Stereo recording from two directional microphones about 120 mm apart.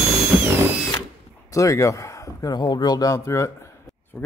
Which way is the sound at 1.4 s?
25° left (ahead or behind).